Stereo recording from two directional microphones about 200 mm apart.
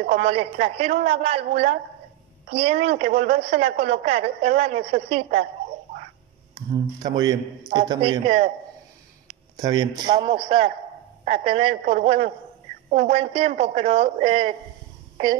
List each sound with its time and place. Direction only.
0.0 s a woman's voice: 30° right (ahead or behind)
2.5 s a woman's voice: 35° right (ahead or behind)
6.7 s a man's voice: 20° right (ahead or behind)
9.6 s a man's voice: 20° right (ahead or behind)